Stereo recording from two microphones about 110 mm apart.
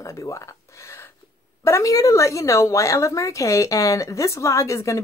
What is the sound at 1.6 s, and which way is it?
Speech, 30° left (ahead or behind).